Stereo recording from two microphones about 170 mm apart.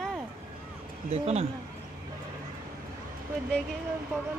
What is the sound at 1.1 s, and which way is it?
Speech, 40° right (ahead or behind).